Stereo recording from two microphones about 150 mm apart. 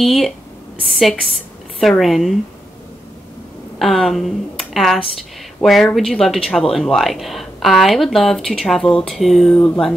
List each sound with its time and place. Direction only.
0.0 s speech: centre (ahead or behind)
3.8 s speech: centre (ahead or behind)